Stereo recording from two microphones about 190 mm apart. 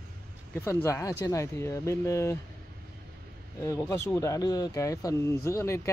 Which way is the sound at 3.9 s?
15° left (ahead or behind).